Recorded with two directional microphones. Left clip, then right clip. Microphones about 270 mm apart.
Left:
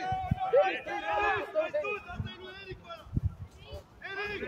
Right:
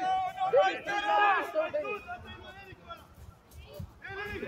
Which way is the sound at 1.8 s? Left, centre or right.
Left.